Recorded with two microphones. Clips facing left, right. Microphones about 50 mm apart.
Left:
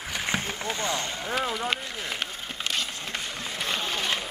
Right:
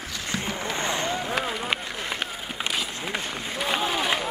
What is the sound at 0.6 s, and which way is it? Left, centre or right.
Vehicle, right.